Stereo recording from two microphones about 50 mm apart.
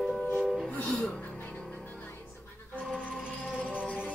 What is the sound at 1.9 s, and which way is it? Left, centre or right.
Music, left.